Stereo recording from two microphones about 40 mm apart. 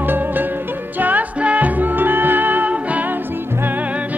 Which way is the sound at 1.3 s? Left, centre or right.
Right.